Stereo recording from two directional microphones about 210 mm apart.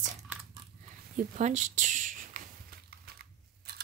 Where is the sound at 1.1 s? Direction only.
35° right (ahead or behind).